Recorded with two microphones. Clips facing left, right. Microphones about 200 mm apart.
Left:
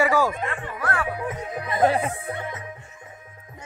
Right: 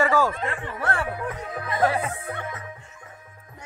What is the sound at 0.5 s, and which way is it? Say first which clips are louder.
Speech: even; 25° right (ahead or behind).